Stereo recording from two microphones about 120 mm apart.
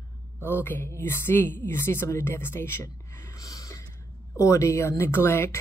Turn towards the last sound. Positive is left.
turn(degrees=20)  # may be behind; listen again after turning